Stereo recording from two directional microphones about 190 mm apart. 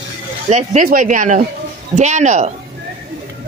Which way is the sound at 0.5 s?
40° right (ahead or behind).